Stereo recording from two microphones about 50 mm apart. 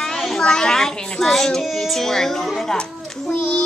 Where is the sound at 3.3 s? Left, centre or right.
Centre.